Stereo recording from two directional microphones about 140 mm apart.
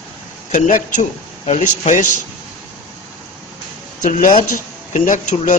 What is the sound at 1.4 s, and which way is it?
Speech, 50° left (ahead or behind).